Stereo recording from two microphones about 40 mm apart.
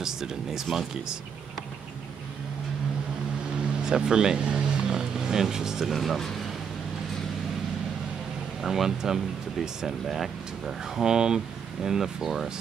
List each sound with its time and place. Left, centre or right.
0.0 s speech: centre
3.8 s vehicle: centre
5.9 s speech: centre
8.6 s speech: centre